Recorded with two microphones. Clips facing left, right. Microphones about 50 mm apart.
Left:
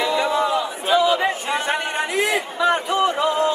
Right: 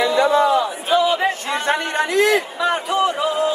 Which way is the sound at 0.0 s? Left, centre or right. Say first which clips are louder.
Right 4 dB; centre.